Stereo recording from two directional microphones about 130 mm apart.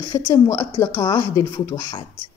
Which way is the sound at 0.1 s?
25° left (ahead or behind).